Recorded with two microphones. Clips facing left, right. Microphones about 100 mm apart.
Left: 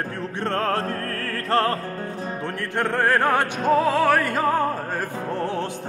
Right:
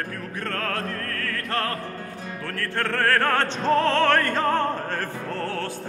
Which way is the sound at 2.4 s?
20° left (ahead or behind).